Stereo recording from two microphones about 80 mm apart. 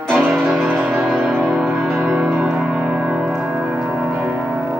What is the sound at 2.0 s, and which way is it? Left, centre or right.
Music, centre.